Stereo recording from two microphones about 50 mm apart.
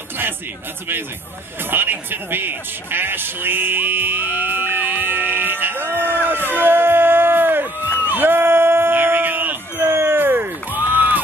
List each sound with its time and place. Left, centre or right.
1.7 s speech: right
6.5 s music: right
8.1 s a sound: right